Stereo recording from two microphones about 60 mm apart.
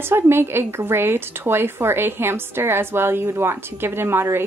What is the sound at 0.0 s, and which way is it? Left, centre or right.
A woman's voice, right.